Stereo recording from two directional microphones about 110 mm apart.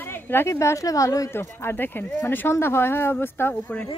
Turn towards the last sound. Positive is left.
turn(degrees=20)  # may be behind; listen again after turning